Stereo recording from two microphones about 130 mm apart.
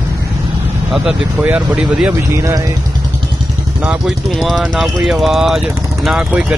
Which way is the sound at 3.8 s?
5° right (ahead or behind).